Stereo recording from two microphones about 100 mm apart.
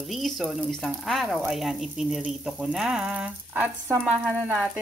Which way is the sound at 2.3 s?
10° right (ahead or behind).